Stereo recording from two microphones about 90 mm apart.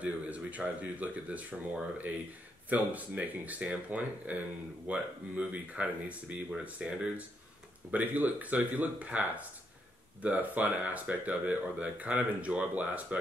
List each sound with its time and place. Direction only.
0.0 s speech: 15° right (ahead or behind)